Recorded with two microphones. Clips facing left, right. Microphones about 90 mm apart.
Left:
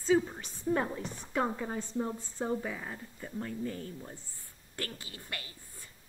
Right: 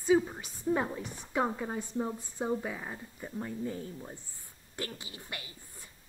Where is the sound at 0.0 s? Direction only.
10° right (ahead or behind).